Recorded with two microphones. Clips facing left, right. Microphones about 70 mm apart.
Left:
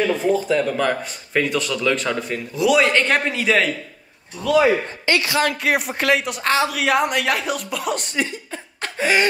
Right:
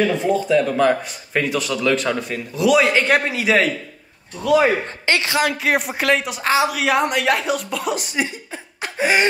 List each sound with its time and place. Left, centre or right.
0.0 s speech: centre
4.6 s a man's voice: right
5.4 s speech: centre